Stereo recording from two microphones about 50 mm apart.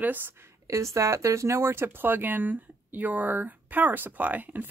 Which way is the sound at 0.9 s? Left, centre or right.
Right.